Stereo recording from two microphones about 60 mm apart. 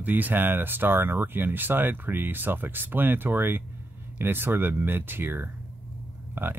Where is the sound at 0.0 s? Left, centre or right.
Right.